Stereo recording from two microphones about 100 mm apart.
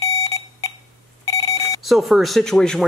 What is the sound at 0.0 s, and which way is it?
Alarm clock, 35° left (ahead or behind).